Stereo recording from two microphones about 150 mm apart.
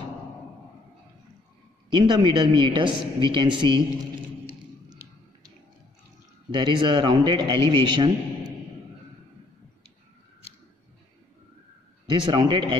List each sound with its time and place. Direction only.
1.9 s a woman's voice: 30° right (ahead or behind)
6.5 s a woman's voice: 30° right (ahead or behind)
12.1 s a woman's voice: 30° right (ahead or behind)